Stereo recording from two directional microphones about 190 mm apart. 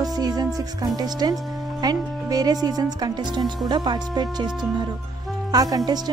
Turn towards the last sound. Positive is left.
turn(degrees=-20)  # may be behind; listen again after turning